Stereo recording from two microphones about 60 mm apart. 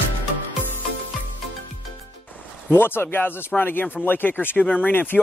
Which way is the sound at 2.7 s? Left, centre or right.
Left.